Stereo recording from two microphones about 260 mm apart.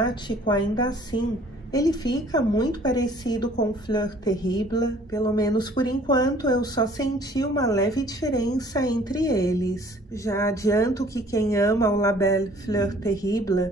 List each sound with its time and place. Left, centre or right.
0.0 s speech: centre